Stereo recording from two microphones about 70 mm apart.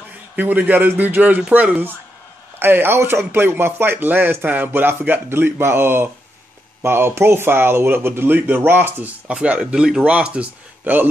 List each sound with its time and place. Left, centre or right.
0.4 s a man's voice: right
9.3 s speech: centre